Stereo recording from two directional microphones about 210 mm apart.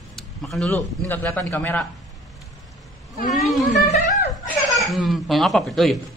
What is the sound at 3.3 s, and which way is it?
Speech, centre (ahead or behind).